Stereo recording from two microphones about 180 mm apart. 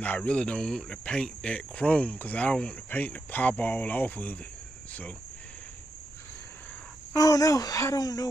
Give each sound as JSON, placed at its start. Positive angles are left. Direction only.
{"t": 0.0, "sound": "speech", "side_deg": 10}
{"t": 7.2, "sound": "speech", "side_deg": 20}